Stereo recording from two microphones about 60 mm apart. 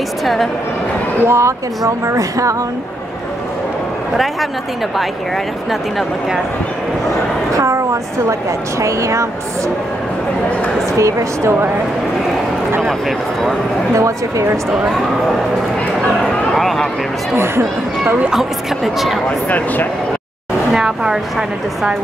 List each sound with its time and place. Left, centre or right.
0.2 s a woman's voice: centre
1.2 s speech: right
1.9 s a woman's voice: right
7.5 s a woman's voice: right
11.0 s a woman's voice: right
13.9 s a woman's voice: right
16.5 s a sound: centre
19.5 s speech: left
20.7 s a woman's voice: centre